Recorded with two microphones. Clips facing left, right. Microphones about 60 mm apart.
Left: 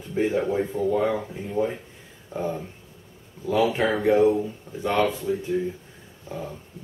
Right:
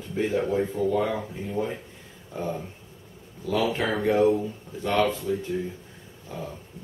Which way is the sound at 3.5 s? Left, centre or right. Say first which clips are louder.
Left 3 dB; centre.